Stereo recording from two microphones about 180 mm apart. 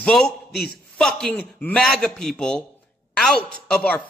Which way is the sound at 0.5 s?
60° left (ahead or behind).